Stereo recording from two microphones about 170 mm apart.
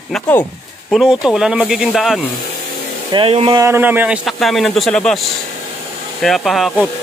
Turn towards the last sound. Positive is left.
turn(degrees=0)  # may be behind; listen again after turning